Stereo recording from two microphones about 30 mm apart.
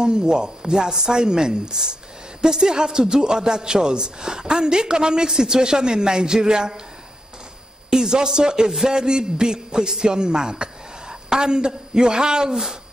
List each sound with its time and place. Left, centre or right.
0.0 s a man's voice: right
7.9 s a man's voice: right